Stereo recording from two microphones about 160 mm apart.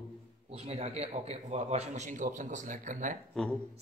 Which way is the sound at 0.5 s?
40° right (ahead or behind).